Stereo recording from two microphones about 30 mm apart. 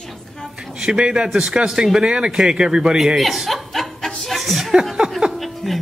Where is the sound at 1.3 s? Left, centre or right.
Centre.